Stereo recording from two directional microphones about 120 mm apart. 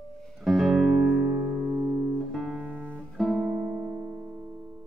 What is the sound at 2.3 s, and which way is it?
Music, centre (ahead or behind).